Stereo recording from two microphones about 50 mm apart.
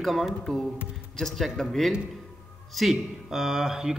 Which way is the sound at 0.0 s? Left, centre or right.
Centre.